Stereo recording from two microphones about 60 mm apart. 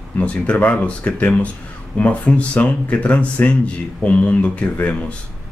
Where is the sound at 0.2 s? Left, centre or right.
Left.